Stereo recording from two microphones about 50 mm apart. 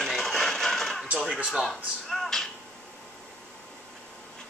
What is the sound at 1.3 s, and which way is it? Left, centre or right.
Speech, centre.